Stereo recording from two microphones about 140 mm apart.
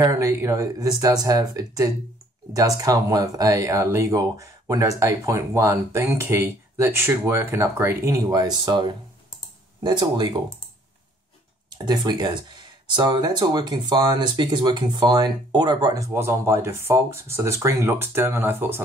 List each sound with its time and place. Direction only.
0.0 s speech: 20° right (ahead or behind)
11.8 s speech: 30° right (ahead or behind)